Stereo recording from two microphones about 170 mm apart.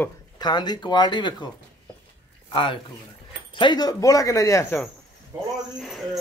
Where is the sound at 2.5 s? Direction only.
30° left (ahead or behind).